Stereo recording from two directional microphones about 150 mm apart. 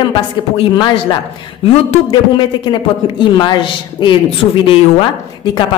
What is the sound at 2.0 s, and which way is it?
A woman's voice, 30° left (ahead or behind).